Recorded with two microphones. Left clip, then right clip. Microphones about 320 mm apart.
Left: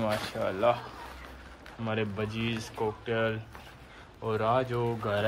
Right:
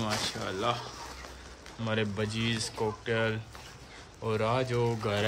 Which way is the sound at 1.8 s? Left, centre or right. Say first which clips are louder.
Right 1 dB; centre.